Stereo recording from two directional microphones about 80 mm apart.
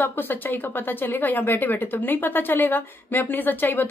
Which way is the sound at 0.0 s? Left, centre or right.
Left.